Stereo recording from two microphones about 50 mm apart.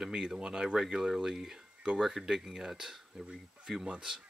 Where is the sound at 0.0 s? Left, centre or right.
Centre.